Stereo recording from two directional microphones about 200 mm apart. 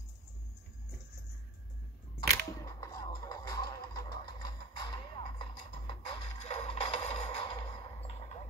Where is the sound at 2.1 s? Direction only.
20° left (ahead or behind).